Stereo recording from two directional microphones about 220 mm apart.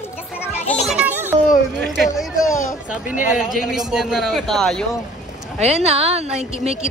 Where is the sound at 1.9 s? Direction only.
Centre (ahead or behind).